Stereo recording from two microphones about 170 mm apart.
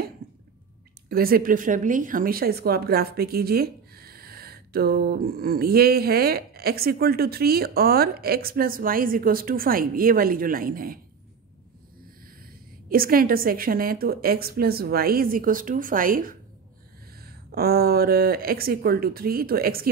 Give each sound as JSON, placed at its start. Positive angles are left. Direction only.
{"t": 0.2, "sound": "a sound", "side_deg": -65}
{"t": 1.0, "sound": "speech", "side_deg": -60}
{"t": 12.9, "sound": "speech", "side_deg": -60}